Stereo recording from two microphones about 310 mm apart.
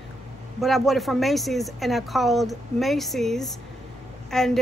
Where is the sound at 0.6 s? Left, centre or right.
Centre.